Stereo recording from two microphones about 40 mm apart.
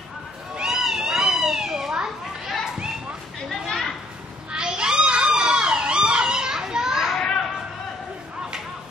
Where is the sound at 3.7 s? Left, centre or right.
Centre.